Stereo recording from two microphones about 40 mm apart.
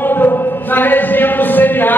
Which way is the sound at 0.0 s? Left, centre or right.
Left.